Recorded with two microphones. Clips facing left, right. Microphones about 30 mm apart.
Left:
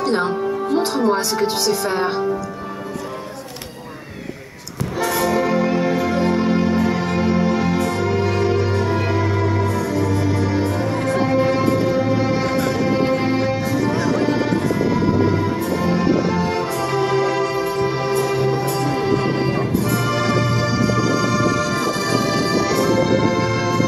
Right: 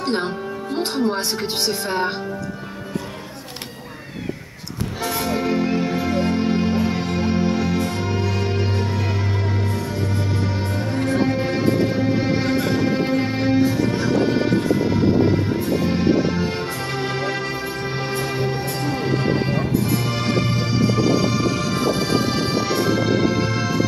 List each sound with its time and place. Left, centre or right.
0.0 s music: right
1.9 s speech: centre
5.0 s music: right
5.7 s music: centre
6.5 s music: right
9.9 s music: right
15.8 s music: right
18.9 s music: centre
20.1 s music: right